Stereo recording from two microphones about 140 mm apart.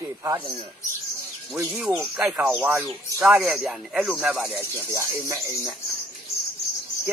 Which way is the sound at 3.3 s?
10° right (ahead or behind).